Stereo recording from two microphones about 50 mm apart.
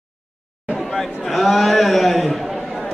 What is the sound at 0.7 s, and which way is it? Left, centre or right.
A man's voice, centre.